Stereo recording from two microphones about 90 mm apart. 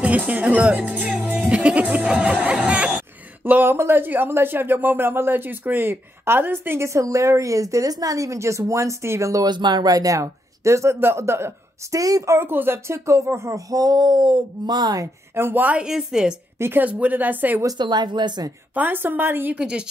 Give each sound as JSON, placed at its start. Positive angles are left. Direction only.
{"t": 0.3, "sound": "speech", "side_deg": -15}
{"t": 9.5, "sound": "speech", "side_deg": -55}
{"t": 12.0, "sound": "speech", "side_deg": -40}
{"t": 15.3, "sound": "speech", "side_deg": -25}
{"t": 16.5, "sound": "speech", "side_deg": -30}
{"t": 16.8, "sound": "speech", "side_deg": -20}
{"t": 17.7, "sound": "speech", "side_deg": -55}
{"t": 18.8, "sound": "speech", "side_deg": -20}
{"t": 19.5, "sound": "speech", "side_deg": -10}